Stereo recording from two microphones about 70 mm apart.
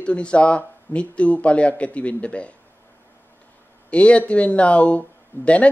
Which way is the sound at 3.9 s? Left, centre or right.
Centre.